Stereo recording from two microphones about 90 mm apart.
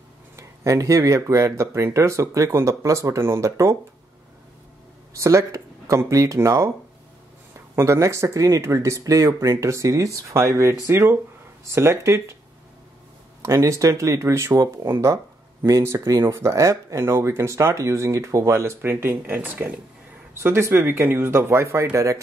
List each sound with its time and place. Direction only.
0.4 s speech: 35° right (ahead or behind)
5.2 s speech: 35° right (ahead or behind)
7.7 s speech: 30° right (ahead or behind)
13.4 s speech: 35° right (ahead or behind)